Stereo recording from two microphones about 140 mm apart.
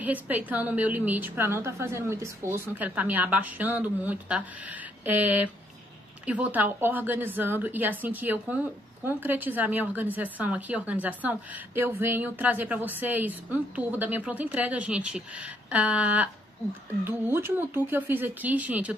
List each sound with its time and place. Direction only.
0.0 s a woman's voice: 10° right (ahead or behind)